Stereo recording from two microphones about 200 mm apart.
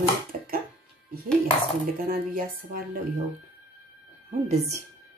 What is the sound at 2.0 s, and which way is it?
Speech, 45° right (ahead or behind).